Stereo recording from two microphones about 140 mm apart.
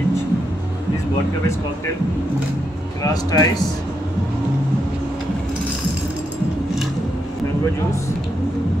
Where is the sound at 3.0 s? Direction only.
25° left (ahead or behind).